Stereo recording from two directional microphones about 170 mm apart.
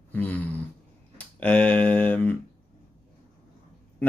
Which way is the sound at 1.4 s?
10° left (ahead or behind).